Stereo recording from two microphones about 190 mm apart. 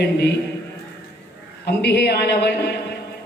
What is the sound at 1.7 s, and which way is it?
Speech, 60° left (ahead or behind).